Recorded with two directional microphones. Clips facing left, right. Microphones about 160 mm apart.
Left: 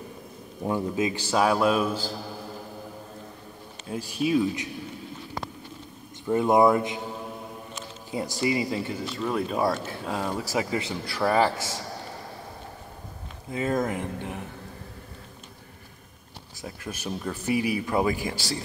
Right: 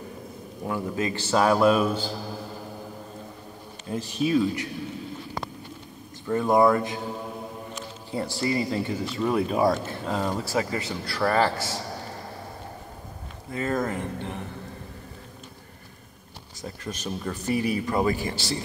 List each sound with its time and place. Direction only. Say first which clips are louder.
0.7 s a man's voice: left 2 dB; 15° left (ahead or behind)
3.8 s speech: right 1 dB; 5° left (ahead or behind)
6.2 s speech: even; 15° left (ahead or behind)
8.1 s speech: even; 15° left (ahead or behind)
13.5 s speech: left 1 dB; 10° left (ahead or behind)
16.6 s speech: right 1 dB; 5° left (ahead or behind)